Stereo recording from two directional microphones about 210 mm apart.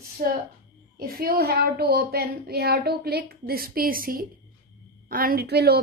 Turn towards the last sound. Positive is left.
turn(degrees=-50)  # may be behind; listen again after turning